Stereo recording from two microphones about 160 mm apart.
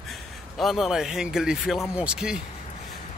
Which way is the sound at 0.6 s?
Centre (ahead or behind).